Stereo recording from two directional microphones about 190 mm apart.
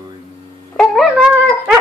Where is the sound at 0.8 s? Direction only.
Centre (ahead or behind).